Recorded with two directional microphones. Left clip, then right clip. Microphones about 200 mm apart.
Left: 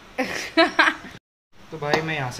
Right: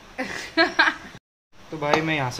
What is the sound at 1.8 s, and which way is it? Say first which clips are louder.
Speech: right 2 dB; 35° right (ahead or behind).